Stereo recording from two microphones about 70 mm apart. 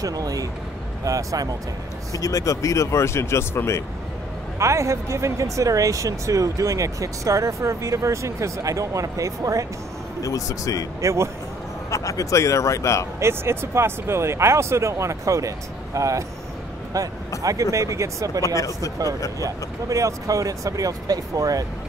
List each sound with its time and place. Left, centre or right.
0.0 s speech: right
2.1 s speech: left
4.6 s speech: right
10.2 s speech: left
11.0 s speech: right
11.9 s speech: left
13.2 s speech: right
17.4 s speech: right
18.4 s speech: left
19.4 s speech: right